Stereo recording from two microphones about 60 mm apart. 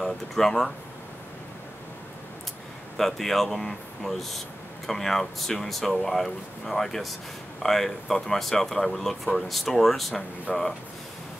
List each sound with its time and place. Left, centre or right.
0.0 s speech: centre
3.0 s speech: centre